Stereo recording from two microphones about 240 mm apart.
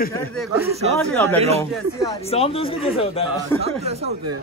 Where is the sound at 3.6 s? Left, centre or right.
Right.